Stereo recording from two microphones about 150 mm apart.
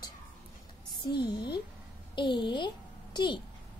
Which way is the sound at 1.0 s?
30° left (ahead or behind).